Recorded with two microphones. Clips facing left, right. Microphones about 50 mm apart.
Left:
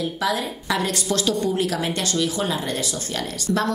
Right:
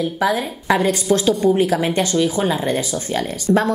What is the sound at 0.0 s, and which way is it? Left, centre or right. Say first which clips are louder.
A woman's voice: right 5 dB; right.